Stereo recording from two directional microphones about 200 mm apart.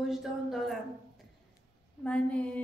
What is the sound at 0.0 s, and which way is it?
Speech, centre (ahead or behind).